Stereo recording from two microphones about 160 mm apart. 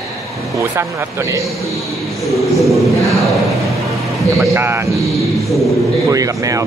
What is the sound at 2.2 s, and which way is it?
Speech, centre (ahead or behind).